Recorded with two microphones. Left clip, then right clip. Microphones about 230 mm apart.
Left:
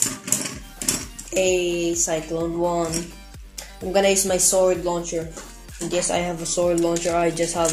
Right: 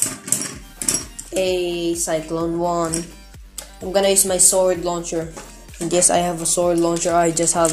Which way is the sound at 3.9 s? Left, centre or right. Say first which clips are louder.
Right 1 dB; centre.